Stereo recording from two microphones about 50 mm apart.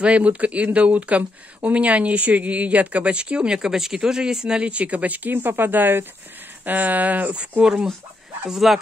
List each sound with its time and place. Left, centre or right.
0.0 s speech: right
4.6 s speech: right
7.6 s speech: centre
8.5 s speech: centre